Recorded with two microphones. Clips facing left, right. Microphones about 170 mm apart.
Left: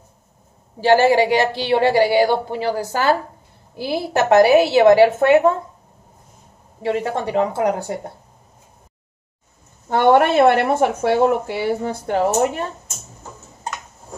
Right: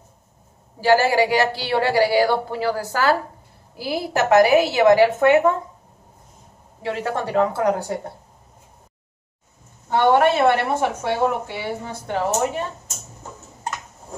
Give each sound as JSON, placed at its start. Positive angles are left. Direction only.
{"t": 0.7, "sound": "a woman's voice", "side_deg": 25}
{"t": 6.8, "sound": "a woman's voice", "side_deg": 25}
{"t": 9.8, "sound": "speech", "side_deg": 50}